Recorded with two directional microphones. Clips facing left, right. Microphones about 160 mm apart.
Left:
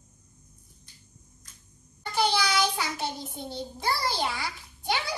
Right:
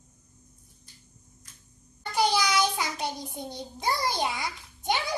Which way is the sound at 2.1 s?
15° right (ahead or behind).